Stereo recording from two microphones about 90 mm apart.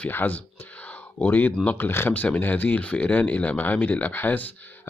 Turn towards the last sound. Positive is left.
turn(degrees=20)  # may be behind; listen again after turning